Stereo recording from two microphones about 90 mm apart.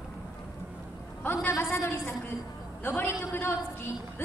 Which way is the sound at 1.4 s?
30° left (ahead or behind).